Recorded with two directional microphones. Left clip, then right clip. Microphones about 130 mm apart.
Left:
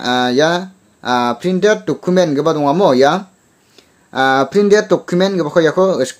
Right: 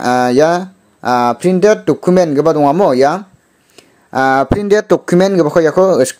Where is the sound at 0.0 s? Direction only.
45° right (ahead or behind).